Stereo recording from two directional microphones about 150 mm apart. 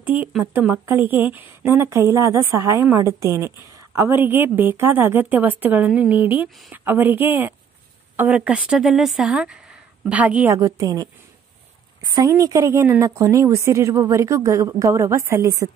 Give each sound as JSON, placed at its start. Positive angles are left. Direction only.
{"t": 0.3, "sound": "speech", "side_deg": -15}